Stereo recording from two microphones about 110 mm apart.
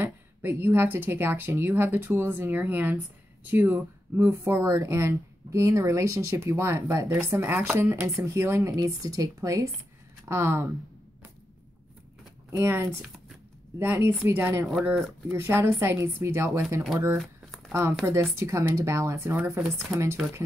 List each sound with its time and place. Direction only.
0.0 s speech: 20° right (ahead or behind)
12.4 s speech: 20° right (ahead or behind)
14.7 s speech: 5° right (ahead or behind)
15.2 s speech: 25° right (ahead or behind)
17.2 s a sound: centre (ahead or behind)
18.0 s speech: 25° right (ahead or behind)
19.6 s speech: centre (ahead or behind)